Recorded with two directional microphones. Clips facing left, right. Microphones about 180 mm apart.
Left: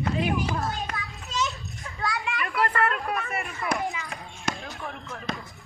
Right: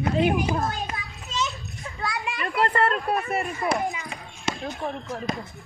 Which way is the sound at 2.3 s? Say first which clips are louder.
Right 4 dB; 25° right (ahead or behind).